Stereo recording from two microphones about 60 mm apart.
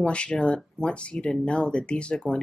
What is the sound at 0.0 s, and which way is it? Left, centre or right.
Speech, centre.